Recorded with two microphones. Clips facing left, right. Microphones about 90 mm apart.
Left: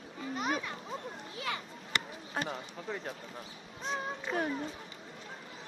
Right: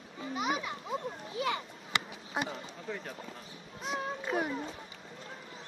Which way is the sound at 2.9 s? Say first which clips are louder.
Even; 15° left (ahead or behind).